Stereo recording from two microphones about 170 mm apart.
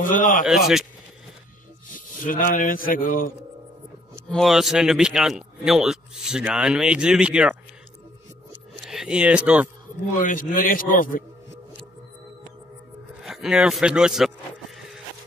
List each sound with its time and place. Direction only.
0.0 s a man's voice: 50° left (ahead or behind)
0.5 s speech: 5° right (ahead or behind)
2.0 s speech: 50° left (ahead or behind)
4.3 s speech: centre (ahead or behind)
8.8 s speech: 5° right (ahead or behind)
10.2 s a man's voice: 55° left (ahead or behind)
13.2 s a man's voice: 5° right (ahead or behind)